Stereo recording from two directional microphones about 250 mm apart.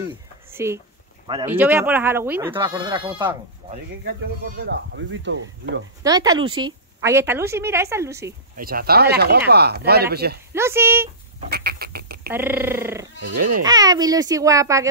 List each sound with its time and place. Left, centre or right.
0.5 s a sound: centre
1.2 s speech: centre
1.5 s a woman's voice: centre
4.0 s speech: right
6.0 s a woman's voice: centre
8.5 s speech: right
10.5 s a woman's voice: centre
11.5 s a sound: right
12.3 s a woman's voice: centre
13.3 s speech: right
13.7 s a woman's voice: centre